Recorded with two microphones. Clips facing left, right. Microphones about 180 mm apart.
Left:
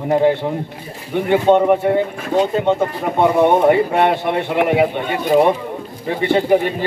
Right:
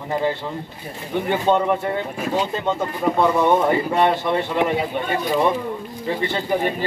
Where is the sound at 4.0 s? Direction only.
60° left (ahead or behind).